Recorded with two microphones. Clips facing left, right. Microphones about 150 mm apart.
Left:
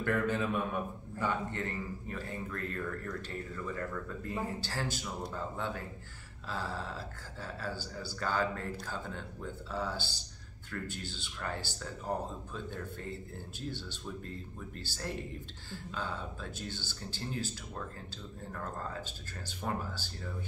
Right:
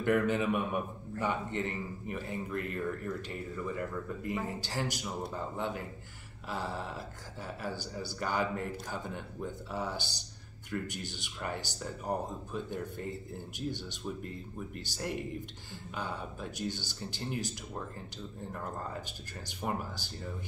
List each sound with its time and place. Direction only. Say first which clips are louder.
0.0 s a man's voice: right 3 dB; 20° right (ahead or behind)